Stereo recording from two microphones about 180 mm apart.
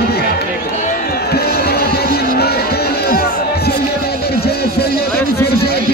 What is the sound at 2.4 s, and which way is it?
Music, 60° left (ahead or behind).